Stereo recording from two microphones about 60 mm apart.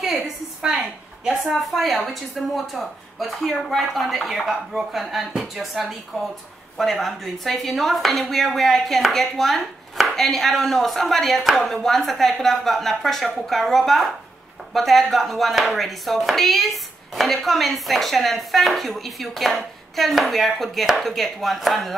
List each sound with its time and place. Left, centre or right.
0.6 s speech: centre